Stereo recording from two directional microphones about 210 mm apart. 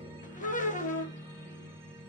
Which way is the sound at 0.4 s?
40° left (ahead or behind).